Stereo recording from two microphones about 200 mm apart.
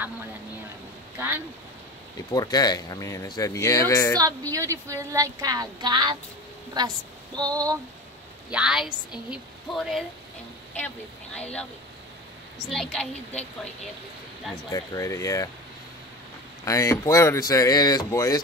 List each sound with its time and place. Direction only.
1.1 s speech: 10° right (ahead or behind)
2.3 s speech: 20° left (ahead or behind)
4.2 s a woman's voice: 15° right (ahead or behind)
8.5 s a woman's voice: 5° right (ahead or behind)
11.3 s a woman's voice: 5° left (ahead or behind)
12.6 s a woman's voice: centre (ahead or behind)
14.7 s speech: 15° left (ahead or behind)
16.6 s speech: 15° left (ahead or behind)